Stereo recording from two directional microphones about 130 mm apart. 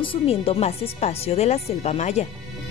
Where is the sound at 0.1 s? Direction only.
50° left (ahead or behind).